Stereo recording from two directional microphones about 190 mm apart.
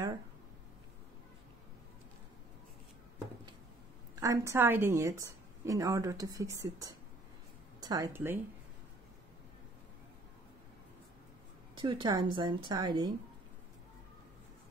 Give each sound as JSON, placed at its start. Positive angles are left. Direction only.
{"t": 4.1, "sound": "a woman's voice", "side_deg": -15}
{"t": 11.7, "sound": "a woman's voice", "side_deg": -25}